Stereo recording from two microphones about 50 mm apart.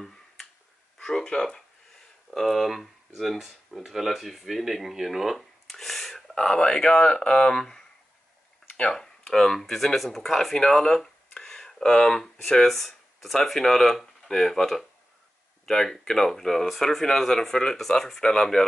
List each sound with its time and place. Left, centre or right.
0.9 s speech: centre
2.3 s speech: centre
6.3 s speech: centre
8.9 s speech: centre